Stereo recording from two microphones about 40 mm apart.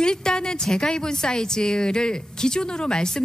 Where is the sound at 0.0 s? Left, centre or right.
Centre.